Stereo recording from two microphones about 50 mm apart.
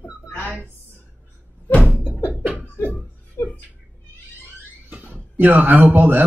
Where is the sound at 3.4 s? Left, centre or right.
Left.